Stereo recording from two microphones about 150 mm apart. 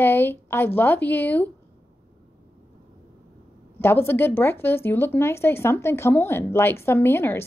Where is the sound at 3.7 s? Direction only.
15° left (ahead or behind).